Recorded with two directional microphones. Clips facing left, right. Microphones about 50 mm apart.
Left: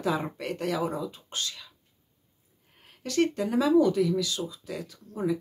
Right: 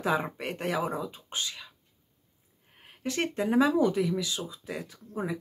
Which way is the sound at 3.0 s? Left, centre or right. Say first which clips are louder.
Left 4 dB; right.